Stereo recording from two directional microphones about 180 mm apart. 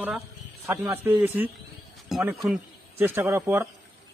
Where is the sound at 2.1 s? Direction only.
Centre (ahead or behind).